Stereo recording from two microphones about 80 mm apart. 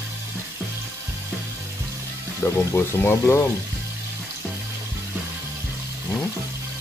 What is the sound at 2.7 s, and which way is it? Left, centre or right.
Speech, left.